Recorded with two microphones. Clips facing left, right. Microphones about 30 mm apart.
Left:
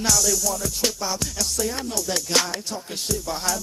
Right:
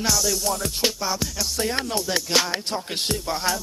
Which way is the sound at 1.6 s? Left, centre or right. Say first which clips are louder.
Right 4 dB; right.